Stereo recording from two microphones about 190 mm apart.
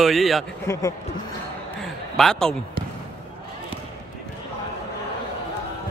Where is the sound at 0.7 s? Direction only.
15° left (ahead or behind).